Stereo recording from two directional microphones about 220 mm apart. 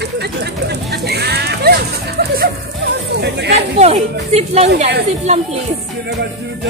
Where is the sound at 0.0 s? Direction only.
50° right (ahead or behind).